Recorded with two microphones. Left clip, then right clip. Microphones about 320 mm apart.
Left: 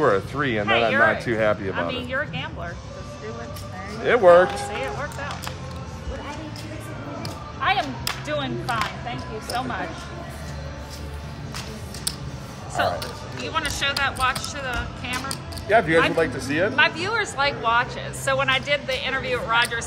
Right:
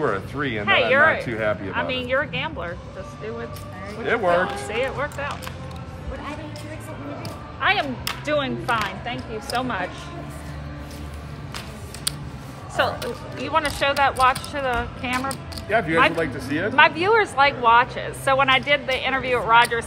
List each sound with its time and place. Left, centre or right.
0.0 s speech: left
0.7 s a woman's voice: right
1.2 s speech: left
1.7 s a woman's voice: right
4.0 s speech: left
4.6 s a woman's voice: right
8.3 s a woman's voice: right
12.8 s a woman's voice: right
15.7 s speech: left
16.7 s a woman's voice: right